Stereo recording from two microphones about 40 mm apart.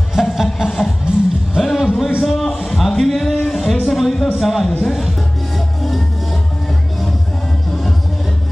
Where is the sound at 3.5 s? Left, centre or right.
Centre.